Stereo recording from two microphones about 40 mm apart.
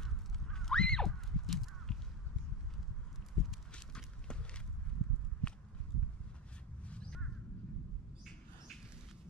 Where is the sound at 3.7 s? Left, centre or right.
Left.